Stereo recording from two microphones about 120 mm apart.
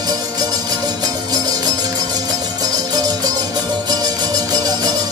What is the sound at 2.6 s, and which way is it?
Music, 35° right (ahead or behind).